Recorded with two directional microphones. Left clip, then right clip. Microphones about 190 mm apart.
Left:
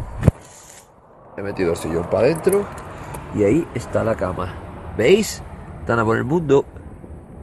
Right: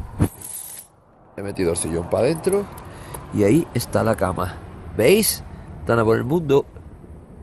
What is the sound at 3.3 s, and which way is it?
Speech, 40° right (ahead or behind).